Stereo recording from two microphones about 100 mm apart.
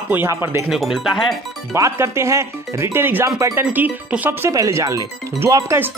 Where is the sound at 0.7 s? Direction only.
Centre (ahead or behind).